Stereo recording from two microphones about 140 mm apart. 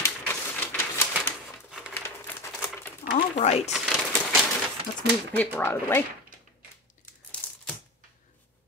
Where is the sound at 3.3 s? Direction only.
50° left (ahead or behind).